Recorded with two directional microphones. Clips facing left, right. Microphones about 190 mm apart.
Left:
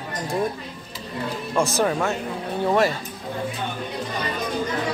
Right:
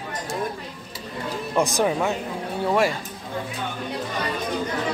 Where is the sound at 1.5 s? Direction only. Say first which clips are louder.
Even; 15° right (ahead or behind).